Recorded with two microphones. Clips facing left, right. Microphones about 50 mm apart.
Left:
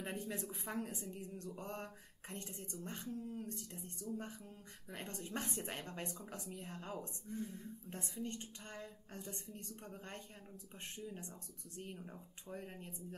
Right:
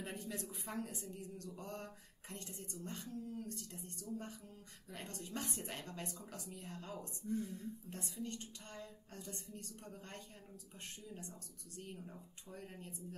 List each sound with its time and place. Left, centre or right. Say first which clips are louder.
0.0 s speech: left 2 dB; left